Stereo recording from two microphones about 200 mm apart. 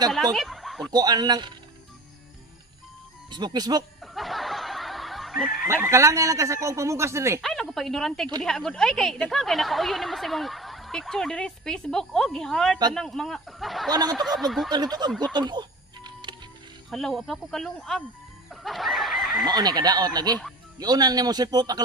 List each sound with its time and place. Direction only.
0.1 s a woman's voice: centre (ahead or behind)
0.9 s a man's voice: 20° right (ahead or behind)
3.3 s a man's voice: 20° right (ahead or behind)
4.0 s snicker: centre (ahead or behind)
5.7 s speech: 15° right (ahead or behind)
7.4 s a woman's voice: centre (ahead or behind)
13.8 s a man's voice: 20° right (ahead or behind)
14.2 s a woman's voice: centre (ahead or behind)
14.7 s a man's voice: 20° right (ahead or behind)
15.3 s music: 20° right (ahead or behind)
16.9 s a woman's voice: centre (ahead or behind)
18.5 s chicken: centre (ahead or behind)
19.4 s a man's voice: 20° right (ahead or behind)